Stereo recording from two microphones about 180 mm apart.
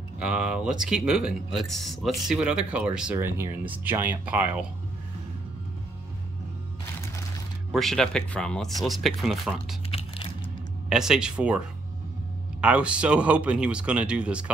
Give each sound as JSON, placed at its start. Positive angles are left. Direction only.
{"t": 0.2, "sound": "speech", "side_deg": -5}
{"t": 7.7, "sound": "speech", "side_deg": 0}
{"t": 9.8, "sound": "crumpling", "side_deg": 35}
{"t": 10.9, "sound": "speech", "side_deg": -5}